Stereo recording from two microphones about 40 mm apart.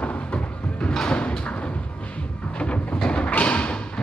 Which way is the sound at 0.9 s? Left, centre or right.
Left.